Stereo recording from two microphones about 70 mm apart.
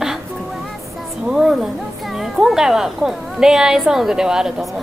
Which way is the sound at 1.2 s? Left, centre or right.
Centre.